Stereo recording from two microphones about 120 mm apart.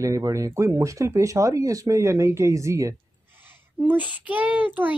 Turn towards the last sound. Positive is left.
turn(degrees=-15)  # may be behind; listen again after turning